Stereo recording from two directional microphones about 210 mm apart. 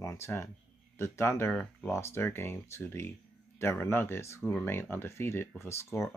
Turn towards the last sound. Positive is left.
turn(degrees=10)  # may be behind; listen again after turning